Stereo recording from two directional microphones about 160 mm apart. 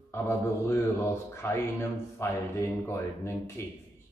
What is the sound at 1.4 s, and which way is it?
A man's voice, 15° left (ahead or behind).